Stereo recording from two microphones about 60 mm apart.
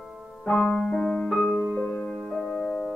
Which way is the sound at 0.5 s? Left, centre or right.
Centre.